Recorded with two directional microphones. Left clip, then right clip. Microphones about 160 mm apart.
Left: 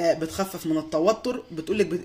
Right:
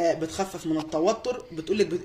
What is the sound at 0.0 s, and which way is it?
Speech, 40° left (ahead or behind).